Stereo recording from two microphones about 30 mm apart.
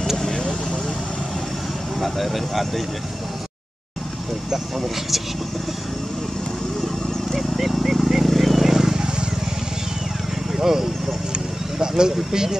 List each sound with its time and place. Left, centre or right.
2.0 s speech: centre
4.7 s speech: centre
6.8 s a sound: centre
10.5 s vehicle: centre
12.2 s speech: centre